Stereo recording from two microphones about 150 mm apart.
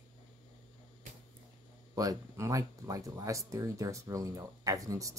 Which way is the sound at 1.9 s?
20° right (ahead or behind).